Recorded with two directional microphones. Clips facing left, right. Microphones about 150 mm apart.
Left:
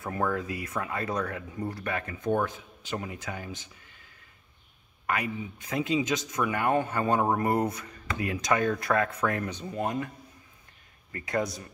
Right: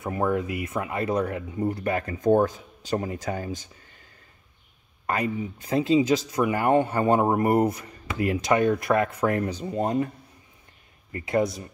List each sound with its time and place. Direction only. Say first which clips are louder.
0.0 s speech: right 4 dB; 20° right (ahead or behind); by 3.6 s 40° right (ahead or behind)
5.0 s speech: right 4 dB; 35° right (ahead or behind)